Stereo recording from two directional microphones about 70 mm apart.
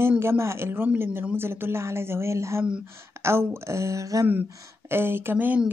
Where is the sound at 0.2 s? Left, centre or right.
Right.